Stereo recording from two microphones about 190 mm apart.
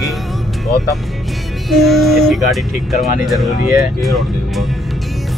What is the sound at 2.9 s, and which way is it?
Speech, 45° left (ahead or behind).